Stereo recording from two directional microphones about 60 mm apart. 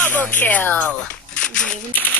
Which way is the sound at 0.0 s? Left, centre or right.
Left.